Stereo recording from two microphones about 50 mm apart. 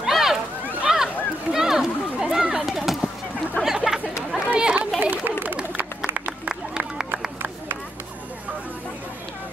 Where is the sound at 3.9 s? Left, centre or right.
Centre.